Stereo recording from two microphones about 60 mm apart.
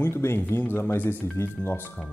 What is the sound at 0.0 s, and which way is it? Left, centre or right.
Speech, left.